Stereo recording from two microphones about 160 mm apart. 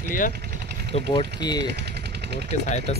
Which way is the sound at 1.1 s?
25° left (ahead or behind).